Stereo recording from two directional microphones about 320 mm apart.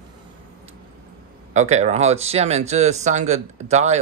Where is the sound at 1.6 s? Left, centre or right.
Right.